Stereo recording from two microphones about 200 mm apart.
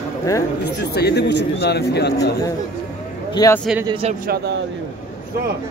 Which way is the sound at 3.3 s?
15° left (ahead or behind).